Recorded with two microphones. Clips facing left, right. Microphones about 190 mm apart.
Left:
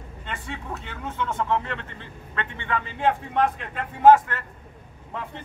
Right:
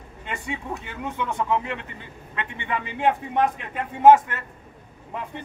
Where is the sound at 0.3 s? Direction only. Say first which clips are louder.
Right 3 dB; 15° right (ahead or behind).